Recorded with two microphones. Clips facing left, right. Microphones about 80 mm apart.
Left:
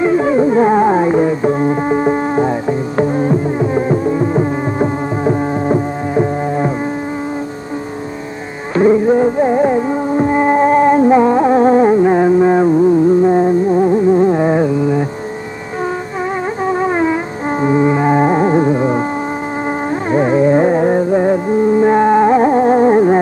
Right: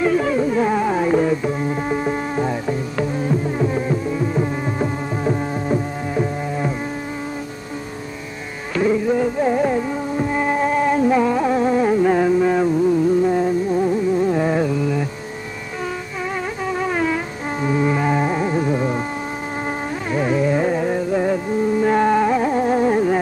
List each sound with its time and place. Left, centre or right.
0.0 s music: left
1.4 s music: left
8.7 s music: left
16.6 s music: left